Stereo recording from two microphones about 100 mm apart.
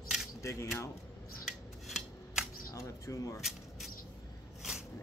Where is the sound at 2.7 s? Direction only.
35° left (ahead or behind).